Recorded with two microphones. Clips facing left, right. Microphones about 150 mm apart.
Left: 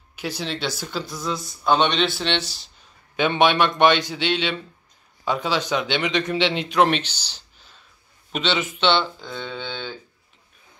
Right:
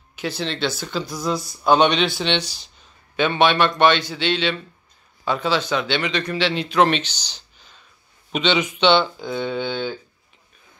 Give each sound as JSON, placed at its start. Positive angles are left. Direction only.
{"t": 0.1, "sound": "a man's voice", "side_deg": 10}
{"t": 1.1, "sound": "speech", "side_deg": -40}
{"t": 1.8, "sound": "speech", "side_deg": -5}
{"t": 3.2, "sound": "a man's voice", "side_deg": 15}
{"t": 9.2, "sound": "speech", "side_deg": -10}